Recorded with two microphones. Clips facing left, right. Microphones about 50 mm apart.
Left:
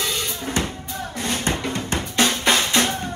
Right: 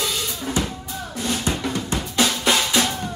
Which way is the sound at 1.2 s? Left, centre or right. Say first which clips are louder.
Even; left.